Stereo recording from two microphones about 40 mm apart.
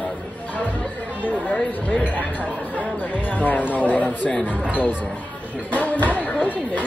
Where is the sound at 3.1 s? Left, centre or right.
Left.